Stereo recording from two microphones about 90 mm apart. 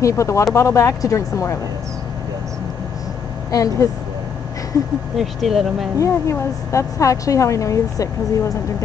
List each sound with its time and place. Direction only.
0.0 s a woman's voice: 35° left (ahead or behind)
3.5 s a woman's voice: 40° left (ahead or behind)
5.1 s speech: 5° right (ahead or behind)
5.9 s a woman's voice: 35° left (ahead or behind)